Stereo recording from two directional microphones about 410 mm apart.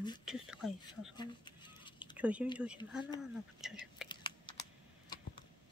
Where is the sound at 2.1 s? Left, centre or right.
Centre.